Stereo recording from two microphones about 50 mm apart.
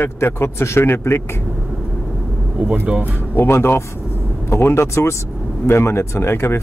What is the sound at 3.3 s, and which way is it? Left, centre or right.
Speech, left.